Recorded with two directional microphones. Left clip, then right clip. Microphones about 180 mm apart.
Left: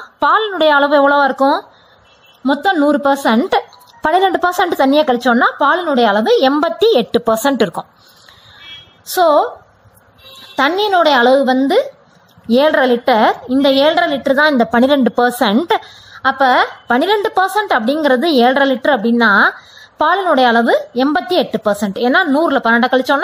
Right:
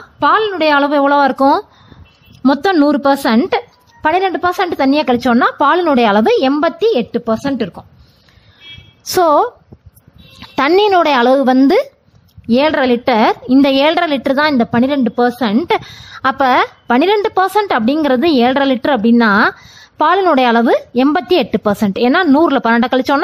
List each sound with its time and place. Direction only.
0.2 s a woman's voice: 5° right (ahead or behind); by 1.4 s 20° right (ahead or behind)
2.4 s a woman's voice: 35° right (ahead or behind)
2.9 s a woman's voice: 20° right (ahead or behind)
4.0 s a woman's voice: 5° right (ahead or behind)
5.1 s a woman's voice: 25° right (ahead or behind)
6.8 s a woman's voice: centre (ahead or behind)
9.1 s a woman's voice: 35° right (ahead or behind)
10.5 s a woman's voice: 35° right (ahead or behind)
12.5 s a woman's voice: 20° right (ahead or behind)
14.4 s a woman's voice: 10° right (ahead or behind)
15.7 s a woman's voice: 30° right (ahead or behind)